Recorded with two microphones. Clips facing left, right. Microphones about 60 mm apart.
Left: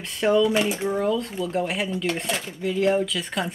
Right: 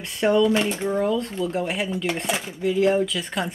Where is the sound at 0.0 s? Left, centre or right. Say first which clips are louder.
Right 1 dB; centre.